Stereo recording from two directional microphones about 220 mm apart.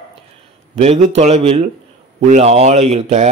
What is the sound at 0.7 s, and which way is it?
Speech, 30° right (ahead or behind).